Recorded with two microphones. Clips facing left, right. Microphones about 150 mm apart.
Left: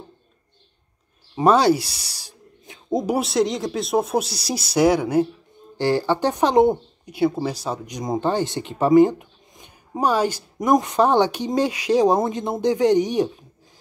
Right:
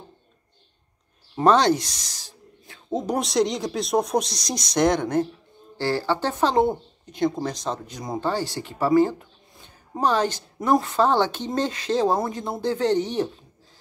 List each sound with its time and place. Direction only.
1.3 s speech: 10° left (ahead or behind)